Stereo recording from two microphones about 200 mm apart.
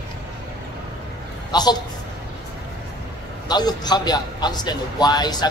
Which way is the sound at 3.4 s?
20° left (ahead or behind).